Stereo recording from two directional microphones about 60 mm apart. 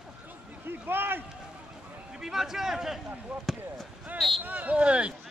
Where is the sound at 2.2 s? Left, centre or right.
Centre.